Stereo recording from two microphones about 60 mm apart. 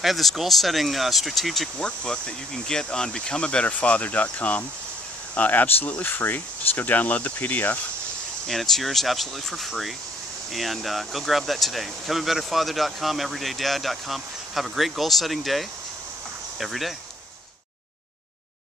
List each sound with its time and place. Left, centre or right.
0.0 s speech: centre
1.8 s speech: centre
8.5 s speech: centre